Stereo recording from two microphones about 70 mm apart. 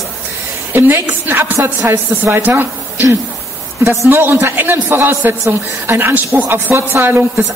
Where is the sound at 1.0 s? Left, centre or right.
Right.